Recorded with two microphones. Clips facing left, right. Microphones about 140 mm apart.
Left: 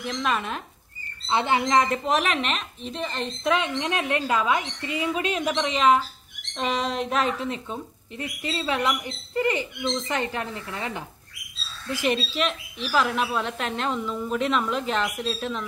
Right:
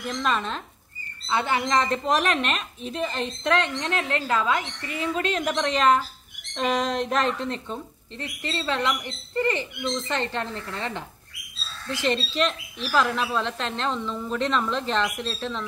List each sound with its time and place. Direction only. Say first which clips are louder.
0.0 s a woman's voice: even; 5° left (ahead or behind)
1.3 s a woman's voice: left 2 dB; 20° left (ahead or behind)
2.0 s a woman's voice: right 1 dB; centre (ahead or behind)
3.8 s a woman's voice: left 1 dB; 15° left (ahead or behind)